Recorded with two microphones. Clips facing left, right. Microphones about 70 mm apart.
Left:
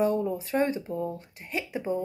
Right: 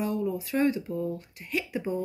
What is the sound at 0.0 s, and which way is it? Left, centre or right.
Speech, left.